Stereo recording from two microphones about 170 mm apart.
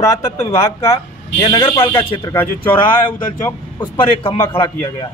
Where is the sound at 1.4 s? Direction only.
30° left (ahead or behind).